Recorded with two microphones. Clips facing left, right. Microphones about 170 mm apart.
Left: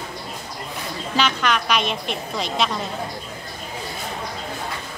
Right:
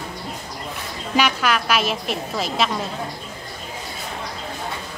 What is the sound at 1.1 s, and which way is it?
A woman's voice, 10° right (ahead or behind).